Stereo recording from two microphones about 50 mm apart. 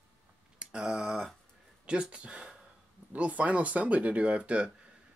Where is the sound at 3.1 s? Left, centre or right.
Right.